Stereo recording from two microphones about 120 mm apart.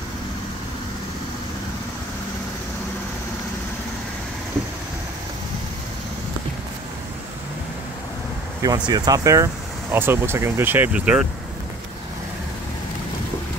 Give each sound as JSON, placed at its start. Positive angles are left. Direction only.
{"t": 8.6, "sound": "speech", "side_deg": -35}